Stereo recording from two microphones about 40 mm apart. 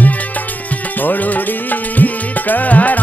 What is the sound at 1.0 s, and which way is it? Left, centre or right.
Music, left.